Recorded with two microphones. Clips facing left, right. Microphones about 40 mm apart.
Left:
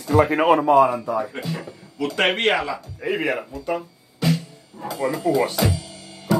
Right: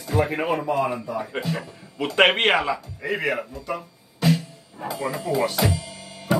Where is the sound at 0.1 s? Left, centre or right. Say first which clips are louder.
Left 7 dB; left.